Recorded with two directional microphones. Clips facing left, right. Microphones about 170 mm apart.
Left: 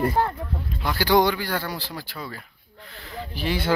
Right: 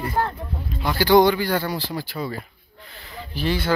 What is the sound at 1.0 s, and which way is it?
A man's voice, 5° left (ahead or behind).